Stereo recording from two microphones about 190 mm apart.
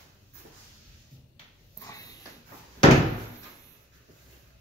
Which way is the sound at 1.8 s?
20° left (ahead or behind).